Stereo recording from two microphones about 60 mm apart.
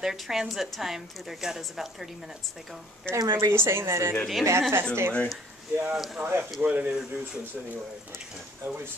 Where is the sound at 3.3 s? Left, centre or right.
Right.